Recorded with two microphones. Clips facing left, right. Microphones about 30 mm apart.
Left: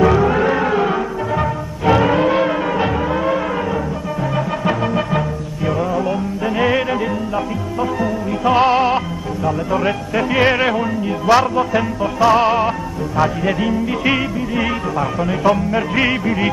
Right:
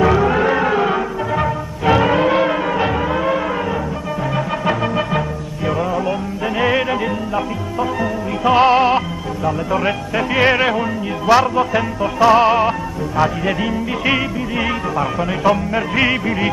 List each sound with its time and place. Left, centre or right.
0.0 s music: centre